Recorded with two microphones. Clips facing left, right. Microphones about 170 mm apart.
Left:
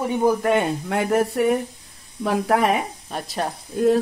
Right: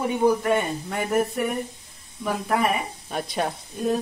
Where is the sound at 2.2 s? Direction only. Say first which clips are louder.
Left 4 dB; 90° left.